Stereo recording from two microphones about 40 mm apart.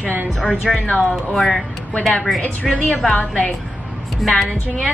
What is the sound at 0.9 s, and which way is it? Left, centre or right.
Speech, left.